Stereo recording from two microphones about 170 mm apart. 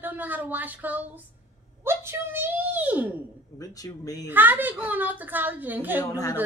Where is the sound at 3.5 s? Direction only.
20° left (ahead or behind).